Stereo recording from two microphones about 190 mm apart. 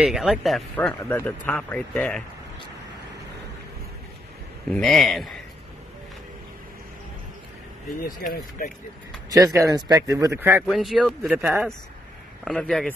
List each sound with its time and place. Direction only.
0.0 s speech: 5° right (ahead or behind)
4.6 s speech: centre (ahead or behind)
8.0 s speech: 50° left (ahead or behind)
9.3 s speech: 20° right (ahead or behind)
10.7 s speech: centre (ahead or behind)